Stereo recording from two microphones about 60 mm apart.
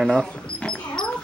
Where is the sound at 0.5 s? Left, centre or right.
Centre.